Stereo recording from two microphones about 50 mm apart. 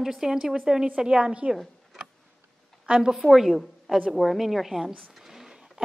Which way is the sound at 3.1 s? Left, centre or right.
Centre.